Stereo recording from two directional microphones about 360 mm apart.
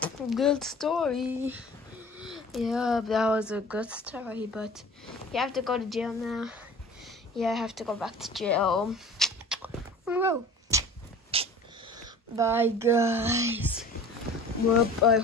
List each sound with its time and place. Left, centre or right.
0.0 s speech: centre
11.3 s wheeze: centre
12.0 s speech: centre